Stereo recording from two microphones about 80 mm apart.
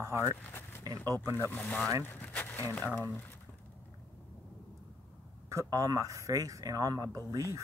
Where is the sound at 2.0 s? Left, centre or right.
Left.